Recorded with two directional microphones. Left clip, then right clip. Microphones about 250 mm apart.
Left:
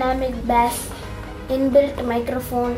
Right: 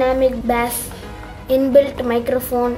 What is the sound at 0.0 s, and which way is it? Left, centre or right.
Speech, right.